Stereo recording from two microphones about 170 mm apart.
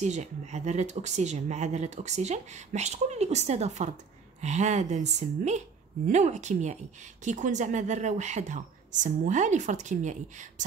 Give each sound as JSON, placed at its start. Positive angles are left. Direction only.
{"t": 0.0, "sound": "speech", "side_deg": -45}